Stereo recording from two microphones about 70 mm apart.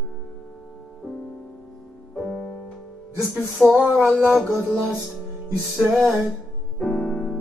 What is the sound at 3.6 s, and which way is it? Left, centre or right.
Speech, centre.